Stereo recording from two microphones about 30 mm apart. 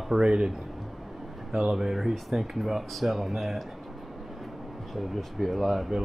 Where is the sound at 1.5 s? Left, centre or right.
Centre.